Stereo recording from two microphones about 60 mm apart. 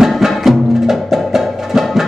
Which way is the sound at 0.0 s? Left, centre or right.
Centre.